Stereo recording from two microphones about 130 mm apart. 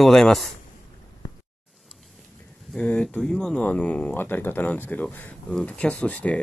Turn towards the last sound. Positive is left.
turn(degrees=10)  # may be behind; listen again after turning